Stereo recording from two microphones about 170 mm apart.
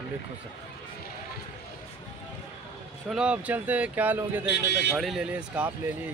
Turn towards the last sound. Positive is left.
turn(degrees=-10)  # may be behind; listen again after turning